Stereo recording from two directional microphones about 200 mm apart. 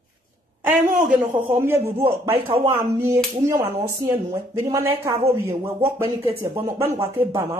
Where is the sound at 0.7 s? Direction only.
10° right (ahead or behind).